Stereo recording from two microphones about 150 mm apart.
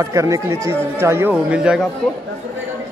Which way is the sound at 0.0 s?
20° right (ahead or behind).